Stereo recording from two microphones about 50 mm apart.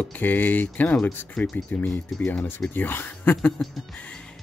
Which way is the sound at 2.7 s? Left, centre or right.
Left.